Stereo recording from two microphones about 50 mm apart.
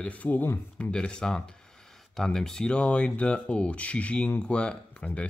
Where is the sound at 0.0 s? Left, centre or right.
Left.